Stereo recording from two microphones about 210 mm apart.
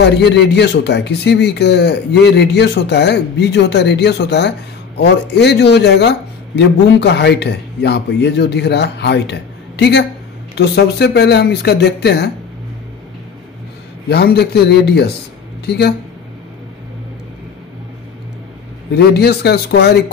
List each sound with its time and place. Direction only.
0.0 s speech: 55° left (ahead or behind)
14.0 s speech: 50° left (ahead or behind)
18.9 s speech: 50° left (ahead or behind)